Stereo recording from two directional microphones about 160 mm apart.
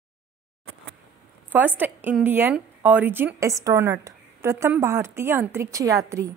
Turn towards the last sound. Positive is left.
turn(degrees=-20)  # may be behind; listen again after turning